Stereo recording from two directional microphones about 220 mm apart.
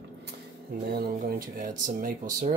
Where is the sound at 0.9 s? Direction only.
45° right (ahead or behind).